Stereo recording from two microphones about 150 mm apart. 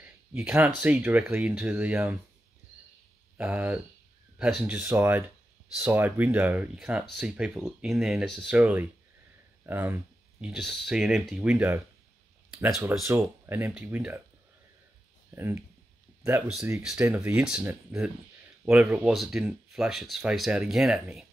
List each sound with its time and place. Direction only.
0.0 s speech: 10° right (ahead or behind)
3.3 s speech: 10° right (ahead or behind)
10.5 s speech: centre (ahead or behind)
13.0 s speech: 20° right (ahead or behind)
15.3 s speech: 15° right (ahead or behind)